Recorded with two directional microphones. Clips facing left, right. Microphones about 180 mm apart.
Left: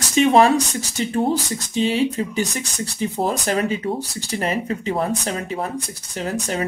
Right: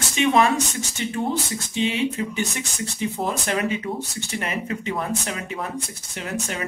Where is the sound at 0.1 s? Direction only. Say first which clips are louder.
Left 5 dB; 35° left (ahead or behind).